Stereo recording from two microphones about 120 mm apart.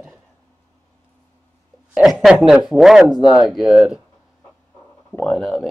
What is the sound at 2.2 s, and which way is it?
Speech, centre (ahead or behind).